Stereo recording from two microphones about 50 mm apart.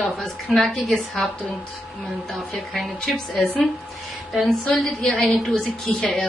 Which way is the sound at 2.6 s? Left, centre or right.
Centre.